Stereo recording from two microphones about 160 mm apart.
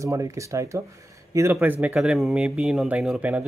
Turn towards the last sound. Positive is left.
turn(degrees=-10)  # may be behind; listen again after turning